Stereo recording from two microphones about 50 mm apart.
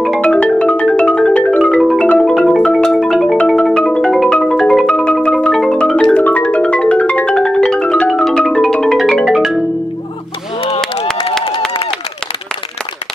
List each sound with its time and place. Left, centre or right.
0.2 s music: centre
2.5 s marimba: centre
3.7 s music: centre
4.3 s marimba: centre
5.5 s music: centre
6.1 s music: left
6.4 s music: centre
8.1 s music: centre
10.8 s a sound: centre